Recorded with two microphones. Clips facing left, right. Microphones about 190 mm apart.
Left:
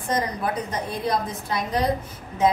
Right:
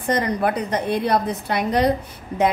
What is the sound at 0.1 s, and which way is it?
A woman's voice, 70° right (ahead or behind).